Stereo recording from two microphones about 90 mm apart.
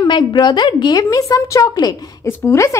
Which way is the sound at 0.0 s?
55° left (ahead or behind).